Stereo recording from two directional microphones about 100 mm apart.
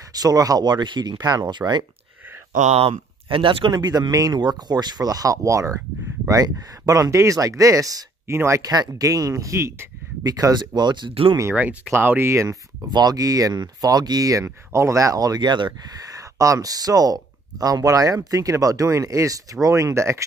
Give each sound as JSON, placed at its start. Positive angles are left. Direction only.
{"t": 0.1, "sound": "speech", "side_deg": -40}
{"t": 2.7, "sound": "speech", "side_deg": -80}
{"t": 3.7, "sound": "speech", "side_deg": -40}
{"t": 10.2, "sound": "speech", "side_deg": -40}
{"t": 11.5, "sound": "speech", "side_deg": -15}
{"t": 12.9, "sound": "speech", "side_deg": -40}